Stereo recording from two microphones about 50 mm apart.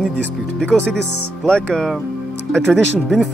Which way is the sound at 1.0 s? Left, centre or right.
Centre.